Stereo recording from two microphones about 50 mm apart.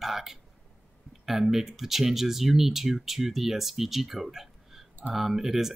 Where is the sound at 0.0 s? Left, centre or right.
Centre.